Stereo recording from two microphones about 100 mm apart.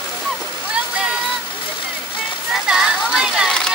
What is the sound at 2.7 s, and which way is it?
Speech, 5° right (ahead or behind).